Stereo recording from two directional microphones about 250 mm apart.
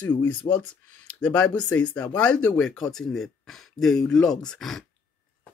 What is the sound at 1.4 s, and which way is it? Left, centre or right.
Speech, left.